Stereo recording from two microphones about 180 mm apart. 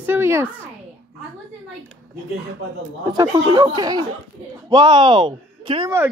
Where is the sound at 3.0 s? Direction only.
20° right (ahead or behind).